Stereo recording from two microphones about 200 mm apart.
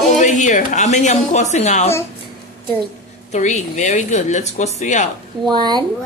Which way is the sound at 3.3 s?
35° left (ahead or behind).